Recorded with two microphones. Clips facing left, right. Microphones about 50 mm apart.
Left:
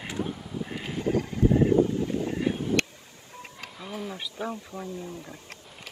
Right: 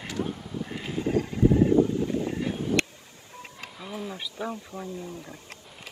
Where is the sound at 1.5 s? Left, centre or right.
Left.